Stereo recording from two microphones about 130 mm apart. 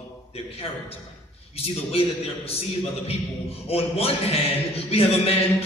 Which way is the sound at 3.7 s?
50° left (ahead or behind).